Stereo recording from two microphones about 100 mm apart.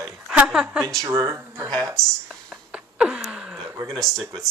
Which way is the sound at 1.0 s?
30° right (ahead or behind).